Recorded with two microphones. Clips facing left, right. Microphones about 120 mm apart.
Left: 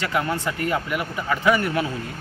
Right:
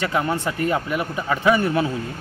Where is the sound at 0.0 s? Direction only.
25° right (ahead or behind).